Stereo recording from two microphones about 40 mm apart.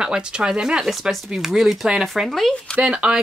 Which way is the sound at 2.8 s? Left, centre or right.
Right.